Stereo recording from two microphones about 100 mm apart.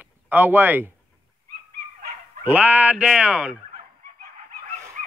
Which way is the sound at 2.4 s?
15° right (ahead or behind).